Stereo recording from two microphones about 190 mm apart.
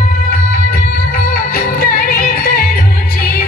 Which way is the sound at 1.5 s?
50° left (ahead or behind).